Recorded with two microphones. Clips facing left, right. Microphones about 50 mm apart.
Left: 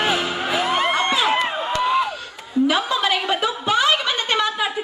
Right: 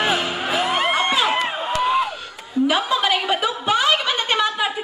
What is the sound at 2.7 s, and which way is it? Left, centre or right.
Snicker, centre.